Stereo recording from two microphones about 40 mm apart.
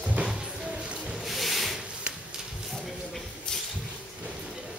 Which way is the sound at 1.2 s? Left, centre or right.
Centre.